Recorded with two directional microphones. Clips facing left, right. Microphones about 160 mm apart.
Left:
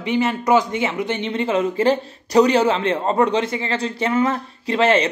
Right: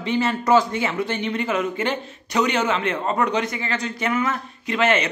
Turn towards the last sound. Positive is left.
turn(degrees=30)  # may be behind; listen again after turning